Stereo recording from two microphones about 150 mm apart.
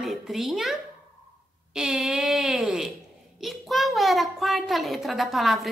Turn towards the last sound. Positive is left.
turn(degrees=0)  # may be behind; listen again after turning